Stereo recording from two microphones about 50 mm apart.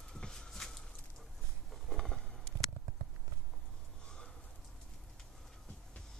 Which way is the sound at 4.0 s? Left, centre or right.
Centre.